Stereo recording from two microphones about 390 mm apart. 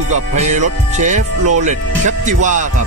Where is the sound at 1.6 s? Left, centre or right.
Centre.